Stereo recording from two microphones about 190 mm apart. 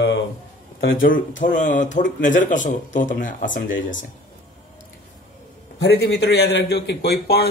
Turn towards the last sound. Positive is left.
turn(degrees=55)  # may be behind; listen again after turning